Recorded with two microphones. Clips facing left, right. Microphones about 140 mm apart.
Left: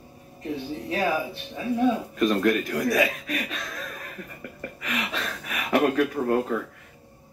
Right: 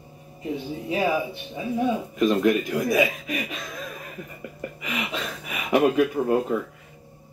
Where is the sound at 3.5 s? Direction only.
10° right (ahead or behind).